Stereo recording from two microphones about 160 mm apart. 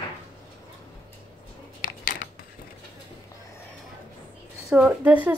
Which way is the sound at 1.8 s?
55° left (ahead or behind).